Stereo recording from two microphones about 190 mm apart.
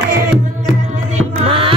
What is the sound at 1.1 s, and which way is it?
Music, 30° right (ahead or behind).